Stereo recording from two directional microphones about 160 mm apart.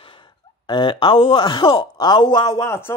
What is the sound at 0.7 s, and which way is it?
Speech, 30° left (ahead or behind).